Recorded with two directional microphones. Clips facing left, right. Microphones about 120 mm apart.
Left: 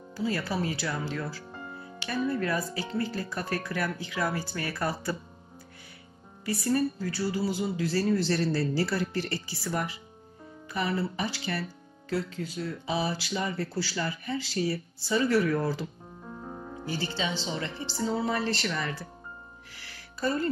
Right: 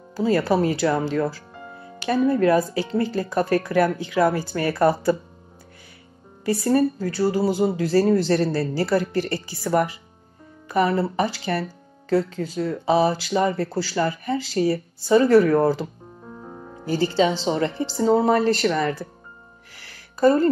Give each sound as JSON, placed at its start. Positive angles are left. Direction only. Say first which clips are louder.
{"t": 0.1, "sound": "speech", "louder": "right 11 dB", "side_deg": -50}
{"t": 6.5, "sound": "speech", "louder": "right 7 dB", "side_deg": -50}
{"t": 19.8, "sound": "music", "louder": "right 13 dB", "side_deg": -45}